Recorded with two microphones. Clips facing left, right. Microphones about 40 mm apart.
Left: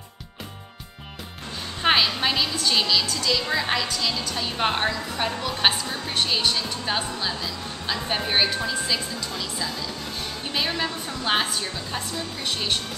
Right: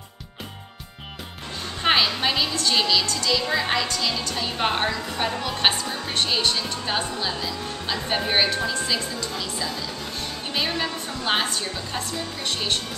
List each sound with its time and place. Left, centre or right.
1.8 s a woman's voice: centre